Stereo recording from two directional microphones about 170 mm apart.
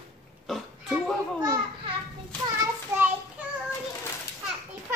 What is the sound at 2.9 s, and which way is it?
Child singing, 15° right (ahead or behind).